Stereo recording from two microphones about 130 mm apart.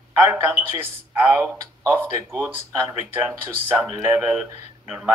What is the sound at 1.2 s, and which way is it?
Speech, 10° right (ahead or behind).